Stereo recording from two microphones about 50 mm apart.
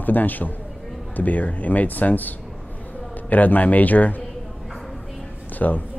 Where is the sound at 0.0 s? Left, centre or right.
Left.